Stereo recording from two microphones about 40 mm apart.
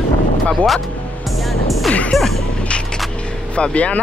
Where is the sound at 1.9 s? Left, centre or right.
Left.